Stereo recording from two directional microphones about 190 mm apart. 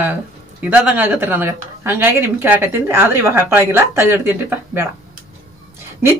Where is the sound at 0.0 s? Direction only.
10° right (ahead or behind).